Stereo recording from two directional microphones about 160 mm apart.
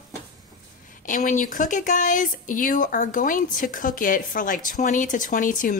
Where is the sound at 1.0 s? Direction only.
55° left (ahead or behind).